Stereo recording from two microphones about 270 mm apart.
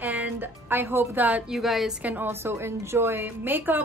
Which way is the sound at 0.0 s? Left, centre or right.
Centre.